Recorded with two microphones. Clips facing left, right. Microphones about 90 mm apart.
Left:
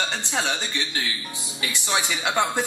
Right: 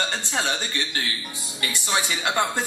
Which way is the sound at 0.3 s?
Centre (ahead or behind).